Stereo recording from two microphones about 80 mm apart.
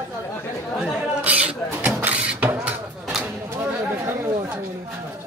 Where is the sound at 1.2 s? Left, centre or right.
Centre.